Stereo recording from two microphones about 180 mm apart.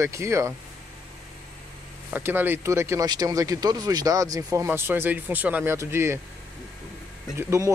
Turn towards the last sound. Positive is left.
turn(degrees=-15)  # may be behind; listen again after turning